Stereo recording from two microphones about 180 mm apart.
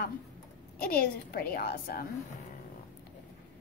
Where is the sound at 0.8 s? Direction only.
55° left (ahead or behind).